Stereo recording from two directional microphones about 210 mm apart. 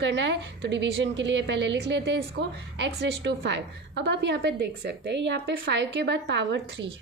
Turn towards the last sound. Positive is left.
turn(degrees=-55)  # may be behind; listen again after turning